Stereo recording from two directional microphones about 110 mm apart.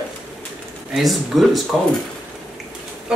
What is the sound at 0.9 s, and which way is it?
Speech, centre (ahead or behind).